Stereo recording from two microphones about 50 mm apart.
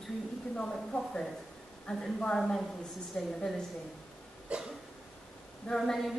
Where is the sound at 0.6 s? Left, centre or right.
Centre.